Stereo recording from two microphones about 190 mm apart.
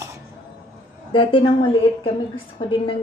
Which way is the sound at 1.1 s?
25° left (ahead or behind).